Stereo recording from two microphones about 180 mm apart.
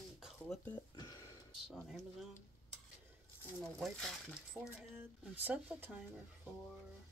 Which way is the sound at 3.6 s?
Centre (ahead or behind).